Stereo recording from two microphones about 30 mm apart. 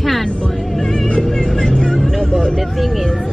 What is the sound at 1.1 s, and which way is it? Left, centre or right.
Vehicle, left.